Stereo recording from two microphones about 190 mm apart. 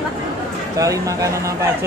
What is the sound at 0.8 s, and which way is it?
Speech, 15° right (ahead or behind).